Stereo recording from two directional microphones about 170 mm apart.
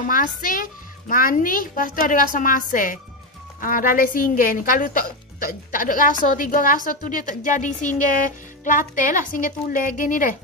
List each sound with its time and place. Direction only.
0.1 s speech: 55° left (ahead or behind)